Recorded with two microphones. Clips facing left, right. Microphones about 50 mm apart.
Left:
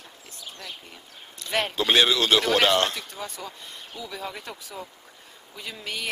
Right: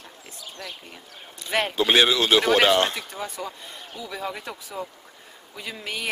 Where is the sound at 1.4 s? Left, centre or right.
Centre.